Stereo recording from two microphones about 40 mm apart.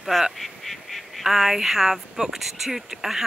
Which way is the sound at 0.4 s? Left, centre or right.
Centre.